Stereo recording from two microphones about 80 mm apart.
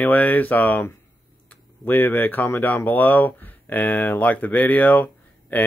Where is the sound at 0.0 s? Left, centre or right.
Left.